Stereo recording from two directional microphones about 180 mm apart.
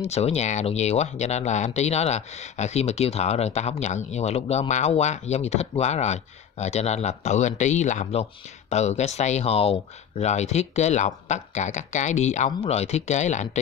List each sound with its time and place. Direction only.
0.0 s speech: 35° left (ahead or behind)